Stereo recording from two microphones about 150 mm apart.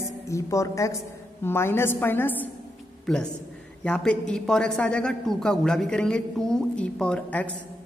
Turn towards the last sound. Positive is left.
turn(degrees=10)  # may be behind; listen again after turning